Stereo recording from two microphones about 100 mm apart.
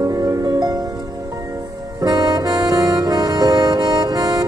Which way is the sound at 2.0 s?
40° right (ahead or behind).